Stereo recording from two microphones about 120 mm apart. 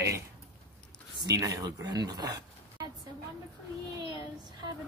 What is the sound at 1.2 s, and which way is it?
Speech, 30° right (ahead or behind).